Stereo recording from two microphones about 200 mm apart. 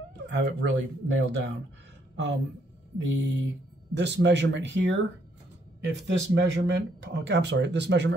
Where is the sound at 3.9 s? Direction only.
60° right (ahead or behind).